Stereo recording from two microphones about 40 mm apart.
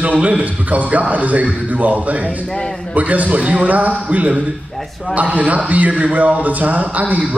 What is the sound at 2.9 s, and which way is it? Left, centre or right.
A man's voice, right.